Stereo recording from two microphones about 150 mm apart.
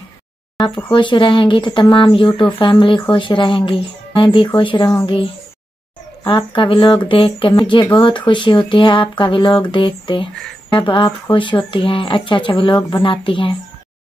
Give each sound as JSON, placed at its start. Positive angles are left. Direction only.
{"t": 0.6, "sound": "speech", "side_deg": 30}